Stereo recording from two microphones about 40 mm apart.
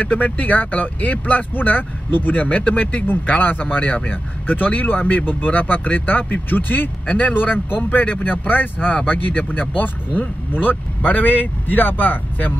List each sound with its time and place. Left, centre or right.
0.0 s speech: left
2.4 s speech: left
7.3 s speech: left